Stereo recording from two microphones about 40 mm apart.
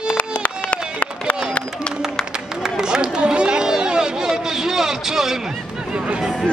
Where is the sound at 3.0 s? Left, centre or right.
Right.